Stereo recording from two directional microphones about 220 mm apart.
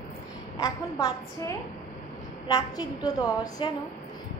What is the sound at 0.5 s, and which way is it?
A woman's voice, 15° left (ahead or behind).